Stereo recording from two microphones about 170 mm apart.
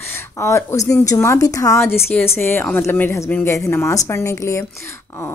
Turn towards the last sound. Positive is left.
turn(degrees=15)  # may be behind; listen again after turning